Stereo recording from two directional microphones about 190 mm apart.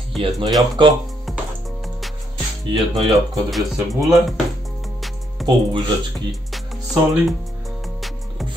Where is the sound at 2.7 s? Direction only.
20° right (ahead or behind).